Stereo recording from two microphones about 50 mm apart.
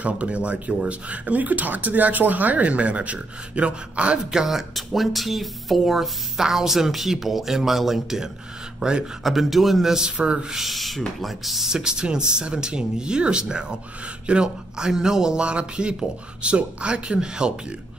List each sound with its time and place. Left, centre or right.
0.0 s speech: right
4.3 s speech: centre
8.7 s speech: centre
9.2 s speech: centre
10.0 s speech: right
10.5 s speech: centre